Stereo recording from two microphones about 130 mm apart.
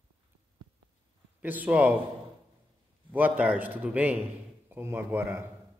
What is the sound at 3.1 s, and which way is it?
A man's voice, 15° right (ahead or behind).